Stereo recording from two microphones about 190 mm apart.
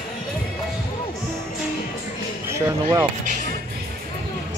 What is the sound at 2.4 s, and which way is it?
Speech, 15° right (ahead or behind).